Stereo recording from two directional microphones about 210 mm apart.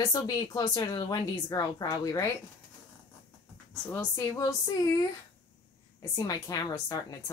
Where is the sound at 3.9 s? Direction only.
15° left (ahead or behind).